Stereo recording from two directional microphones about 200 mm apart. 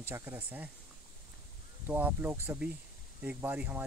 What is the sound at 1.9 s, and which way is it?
Speech, 10° right (ahead or behind).